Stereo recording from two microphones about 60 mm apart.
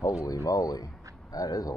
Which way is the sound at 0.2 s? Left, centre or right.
Left.